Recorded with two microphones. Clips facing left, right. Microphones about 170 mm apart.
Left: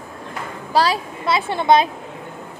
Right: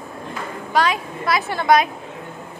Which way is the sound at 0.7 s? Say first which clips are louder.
Left 1 dB; 30° left (ahead or behind).